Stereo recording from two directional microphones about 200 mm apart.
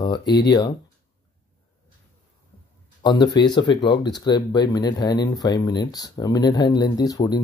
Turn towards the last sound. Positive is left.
turn(degrees=20)  # may be behind; listen again after turning